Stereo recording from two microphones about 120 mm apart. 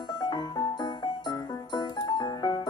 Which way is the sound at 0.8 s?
35° left (ahead or behind).